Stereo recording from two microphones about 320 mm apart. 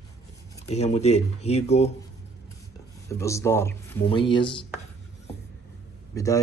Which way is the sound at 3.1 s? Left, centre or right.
Centre.